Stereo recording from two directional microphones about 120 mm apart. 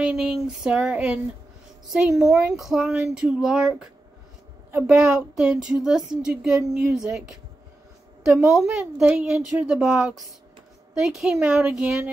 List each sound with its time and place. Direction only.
0.0 s a woman's voice: 5° right (ahead or behind)
4.6 s a woman's voice: 20° right (ahead or behind)
4.9 s a woman's voice: 5° right (ahead or behind)
8.2 s a woman's voice: 5° right (ahead or behind)